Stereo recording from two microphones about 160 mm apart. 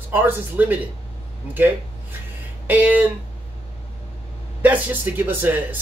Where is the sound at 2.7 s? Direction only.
10° right (ahead or behind).